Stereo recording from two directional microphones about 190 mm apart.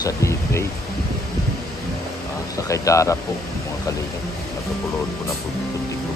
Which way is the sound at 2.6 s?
15° left (ahead or behind).